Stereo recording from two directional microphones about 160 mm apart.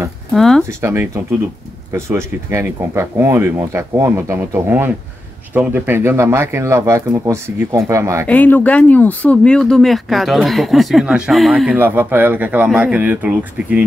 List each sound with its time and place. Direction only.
0.3 s speech: centre (ahead or behind)
0.7 s speech: 15° right (ahead or behind)
8.3 s speech: 10° left (ahead or behind); by 13.8 s 10° right (ahead or behind)